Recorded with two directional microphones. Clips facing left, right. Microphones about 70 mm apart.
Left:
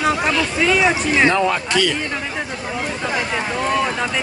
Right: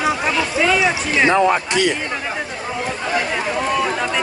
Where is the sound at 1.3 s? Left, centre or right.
Right.